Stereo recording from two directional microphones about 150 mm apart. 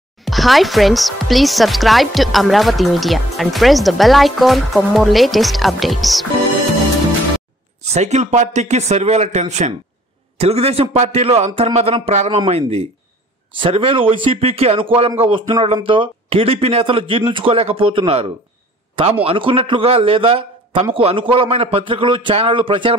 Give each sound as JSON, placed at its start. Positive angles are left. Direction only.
{"t": 0.2, "sound": "speech", "side_deg": 0}
{"t": 7.8, "sound": "a man's voice", "side_deg": -45}